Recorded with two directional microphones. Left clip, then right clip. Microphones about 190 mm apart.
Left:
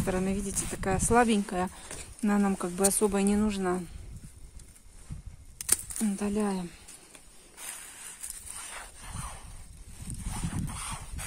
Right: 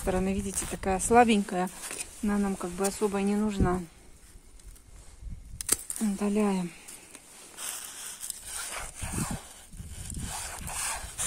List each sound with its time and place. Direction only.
0.0 s speech: centre (ahead or behind)
2.2 s speech: 15° left (ahead or behind)
5.6 s speech: 5° left (ahead or behind); by 6.8 s 10° right (ahead or behind)
7.5 s a sound: 25° right (ahead or behind)
8.7 s dog: 60° right (ahead or behind)
10.4 s a sound: 60° right (ahead or behind)